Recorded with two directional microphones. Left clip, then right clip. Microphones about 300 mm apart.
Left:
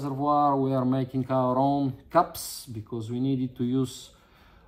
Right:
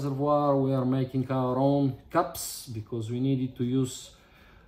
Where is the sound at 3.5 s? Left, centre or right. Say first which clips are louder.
Left 1 dB; centre.